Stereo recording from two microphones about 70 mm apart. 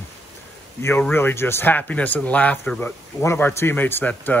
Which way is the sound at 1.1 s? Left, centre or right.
Left.